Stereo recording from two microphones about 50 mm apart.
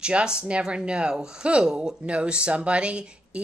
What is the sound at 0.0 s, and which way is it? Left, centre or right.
Speech, centre.